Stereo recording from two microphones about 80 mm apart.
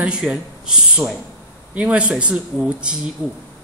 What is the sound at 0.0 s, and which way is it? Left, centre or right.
Speech, centre.